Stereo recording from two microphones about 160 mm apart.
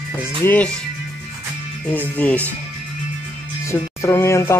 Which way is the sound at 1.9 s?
10° left (ahead or behind).